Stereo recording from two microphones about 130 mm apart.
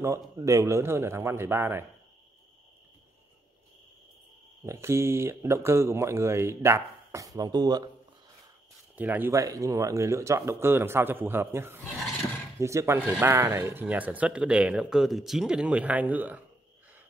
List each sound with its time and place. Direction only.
0.0 s speech: 25° right (ahead or behind)
4.6 s speech: 20° right (ahead or behind)
8.9 s speech: 15° right (ahead or behind)
9.3 s speech: 25° right (ahead or behind)